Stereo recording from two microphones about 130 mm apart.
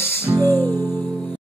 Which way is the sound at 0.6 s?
15° left (ahead or behind).